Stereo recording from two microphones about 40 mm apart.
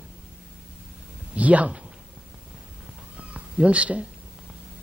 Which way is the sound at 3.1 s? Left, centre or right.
Right.